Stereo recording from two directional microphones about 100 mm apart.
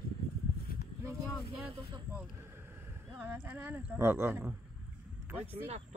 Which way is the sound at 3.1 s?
20° right (ahead or behind).